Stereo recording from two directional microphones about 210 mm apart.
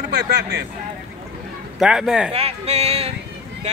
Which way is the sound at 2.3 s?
30° right (ahead or behind).